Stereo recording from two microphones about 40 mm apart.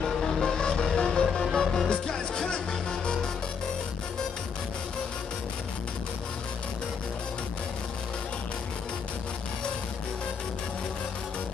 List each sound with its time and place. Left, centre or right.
0.0 s music: centre
1.5 s music: centre